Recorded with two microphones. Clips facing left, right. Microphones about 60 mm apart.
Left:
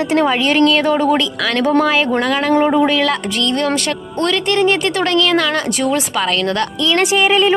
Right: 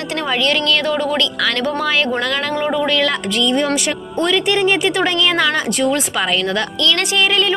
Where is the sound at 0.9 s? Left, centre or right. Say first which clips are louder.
Left 4 dB; left.